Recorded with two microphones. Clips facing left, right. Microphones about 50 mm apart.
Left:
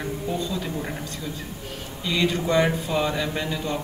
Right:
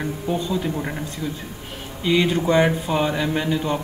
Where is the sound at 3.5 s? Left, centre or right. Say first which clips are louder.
Right 5 dB; right.